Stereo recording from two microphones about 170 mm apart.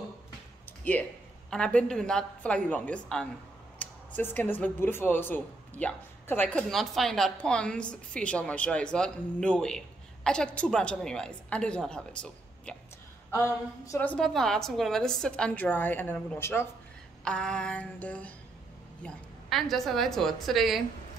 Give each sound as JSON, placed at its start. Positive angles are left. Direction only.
{"t": 1.5, "sound": "a woman's voice", "side_deg": 5}
{"t": 13.8, "sound": "a woman's voice", "side_deg": 10}